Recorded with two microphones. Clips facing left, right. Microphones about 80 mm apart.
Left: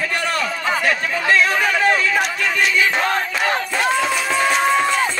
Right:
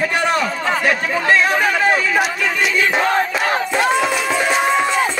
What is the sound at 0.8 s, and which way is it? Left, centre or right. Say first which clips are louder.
Speech: right 3 dB; centre.